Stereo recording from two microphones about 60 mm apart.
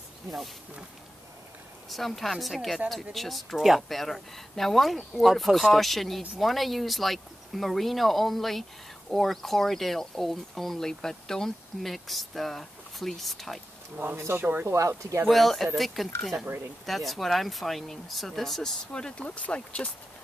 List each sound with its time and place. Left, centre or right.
1.9 s speech: centre
13.9 s speech: right
14.7 s speech: right
15.2 s speech: centre
18.9 s speech: centre